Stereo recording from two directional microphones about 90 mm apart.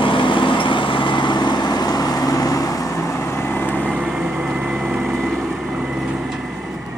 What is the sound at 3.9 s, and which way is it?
Vehicle, 10° right (ahead or behind).